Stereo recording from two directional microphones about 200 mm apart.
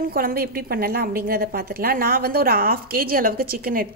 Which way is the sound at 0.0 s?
50° right (ahead or behind).